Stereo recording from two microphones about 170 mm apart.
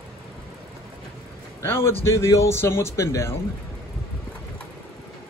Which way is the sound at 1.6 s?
15° left (ahead or behind).